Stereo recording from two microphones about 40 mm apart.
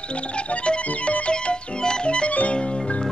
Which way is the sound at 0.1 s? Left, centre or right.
Left.